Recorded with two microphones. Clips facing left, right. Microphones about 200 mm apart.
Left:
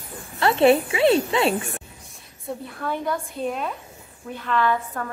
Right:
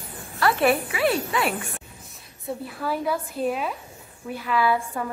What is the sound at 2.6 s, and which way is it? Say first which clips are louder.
A woman's voice: right 1 dB; 5° right (ahead or behind).